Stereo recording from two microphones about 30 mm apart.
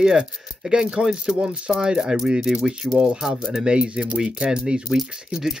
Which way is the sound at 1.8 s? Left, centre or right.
Right.